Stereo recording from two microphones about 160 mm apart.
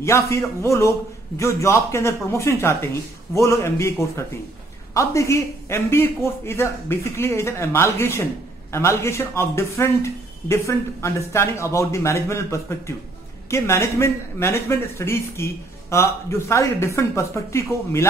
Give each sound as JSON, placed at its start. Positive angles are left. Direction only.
{"t": 0.0, "sound": "a man's voice", "side_deg": 15}
{"t": 4.9, "sound": "a man's voice", "side_deg": 20}